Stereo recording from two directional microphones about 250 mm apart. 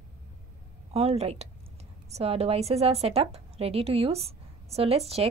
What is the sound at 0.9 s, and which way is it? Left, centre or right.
A woman's voice, right.